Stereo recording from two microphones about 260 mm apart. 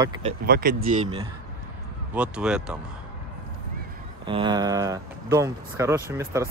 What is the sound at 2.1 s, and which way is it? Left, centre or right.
Speech, centre.